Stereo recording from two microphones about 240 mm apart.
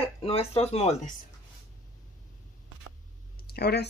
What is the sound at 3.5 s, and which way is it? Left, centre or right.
Speech, left.